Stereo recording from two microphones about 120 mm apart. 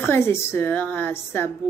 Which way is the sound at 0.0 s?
20° left (ahead or behind).